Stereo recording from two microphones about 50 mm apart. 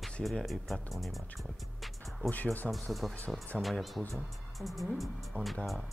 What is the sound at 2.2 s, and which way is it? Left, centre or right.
Speech, left.